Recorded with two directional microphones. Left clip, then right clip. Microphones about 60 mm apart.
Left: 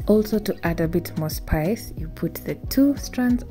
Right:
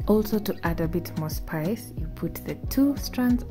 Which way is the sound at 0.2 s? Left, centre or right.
Left.